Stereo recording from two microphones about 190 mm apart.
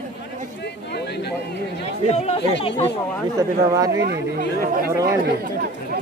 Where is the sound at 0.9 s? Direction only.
60° left (ahead or behind).